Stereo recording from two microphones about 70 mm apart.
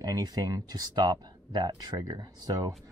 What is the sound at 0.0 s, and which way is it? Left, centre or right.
Speech, right.